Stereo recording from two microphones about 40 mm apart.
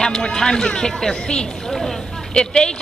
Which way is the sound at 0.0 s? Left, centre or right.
Centre.